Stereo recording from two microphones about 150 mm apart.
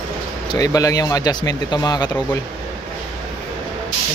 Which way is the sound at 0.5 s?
25° left (ahead or behind).